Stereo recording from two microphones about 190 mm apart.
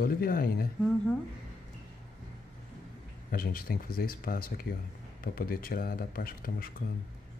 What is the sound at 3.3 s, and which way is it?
Speech, 50° left (ahead or behind).